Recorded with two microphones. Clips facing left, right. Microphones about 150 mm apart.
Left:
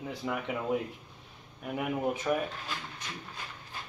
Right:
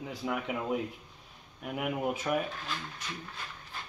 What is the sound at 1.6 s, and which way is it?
Speech, 5° right (ahead or behind).